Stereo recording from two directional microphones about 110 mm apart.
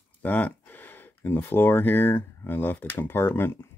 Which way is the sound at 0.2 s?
15° left (ahead or behind).